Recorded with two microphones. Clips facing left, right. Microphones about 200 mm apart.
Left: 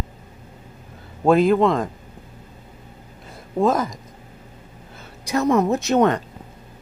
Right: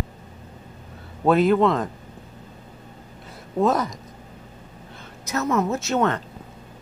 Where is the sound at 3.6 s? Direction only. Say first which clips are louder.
Left 2 dB; centre (ahead or behind).